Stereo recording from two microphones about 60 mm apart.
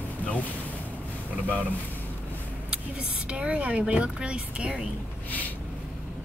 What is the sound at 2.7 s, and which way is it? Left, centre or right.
Speech, centre.